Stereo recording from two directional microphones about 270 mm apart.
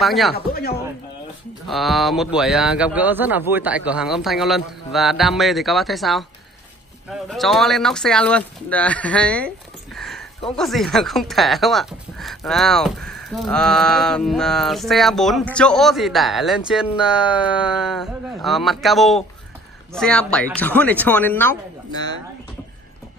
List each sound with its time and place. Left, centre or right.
0.0 s speech: centre
0.3 s speech: left
1.7 s speech: centre